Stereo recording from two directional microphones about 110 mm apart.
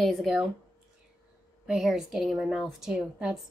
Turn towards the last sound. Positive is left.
turn(degrees=-5)  # may be behind; listen again after turning